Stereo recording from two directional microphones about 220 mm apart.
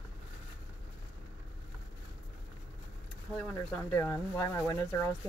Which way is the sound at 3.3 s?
5° left (ahead or behind).